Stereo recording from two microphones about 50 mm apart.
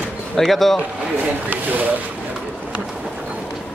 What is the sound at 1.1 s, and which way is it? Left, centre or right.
Speech, right.